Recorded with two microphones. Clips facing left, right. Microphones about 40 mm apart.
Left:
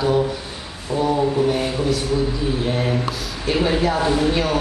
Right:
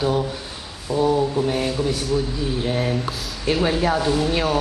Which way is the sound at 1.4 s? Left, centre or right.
Centre.